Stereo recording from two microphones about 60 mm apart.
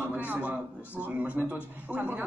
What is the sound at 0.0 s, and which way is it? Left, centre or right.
A man's voice, right.